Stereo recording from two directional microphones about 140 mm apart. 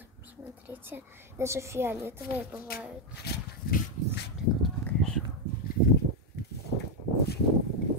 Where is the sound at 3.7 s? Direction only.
90° left.